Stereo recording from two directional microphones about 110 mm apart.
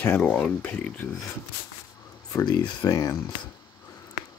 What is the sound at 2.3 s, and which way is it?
Speech, 35° left (ahead or behind).